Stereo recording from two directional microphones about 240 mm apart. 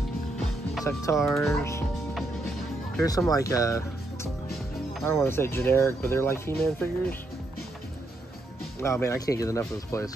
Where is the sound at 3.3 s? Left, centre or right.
Centre.